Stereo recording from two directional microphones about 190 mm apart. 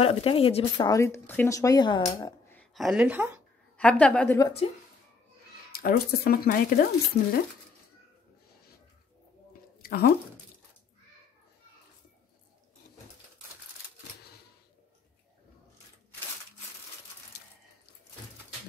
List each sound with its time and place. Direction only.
0.0 s speech: 30° left (ahead or behind)
0.8 s speech: 15° left (ahead or behind)
2.1 s a sound: 15° left (ahead or behind)
2.7 s speech: centre (ahead or behind)
3.7 s speech: 5° left (ahead or behind)
4.6 s speech: 30° left (ahead or behind)
5.8 s speech: 50° left (ahead or behind)
7.2 s speech: 40° left (ahead or behind)
9.8 s squish: 50° left (ahead or behind)